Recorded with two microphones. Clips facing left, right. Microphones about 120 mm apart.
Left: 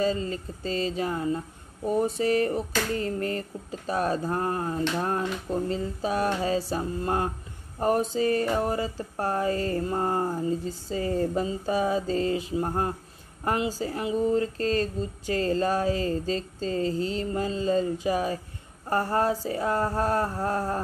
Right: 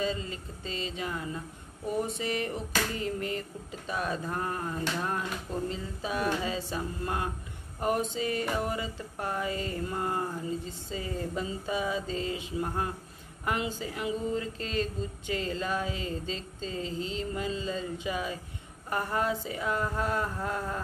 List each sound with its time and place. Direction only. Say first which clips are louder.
0.0 s speech: left 6 dB; 40° left (ahead or behind)